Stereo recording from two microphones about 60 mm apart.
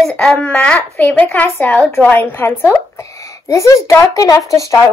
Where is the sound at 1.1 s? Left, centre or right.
Left.